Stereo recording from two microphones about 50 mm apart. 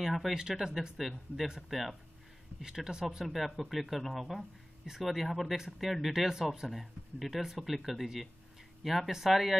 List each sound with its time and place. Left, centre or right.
0.0 s speech: centre
0.3 s speech: centre
2.6 s speech: centre
5.0 s speech: centre
6.7 s speech: centre